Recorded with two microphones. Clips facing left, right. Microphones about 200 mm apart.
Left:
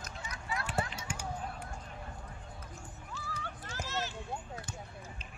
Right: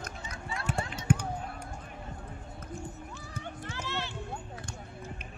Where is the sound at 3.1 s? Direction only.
20° right (ahead or behind).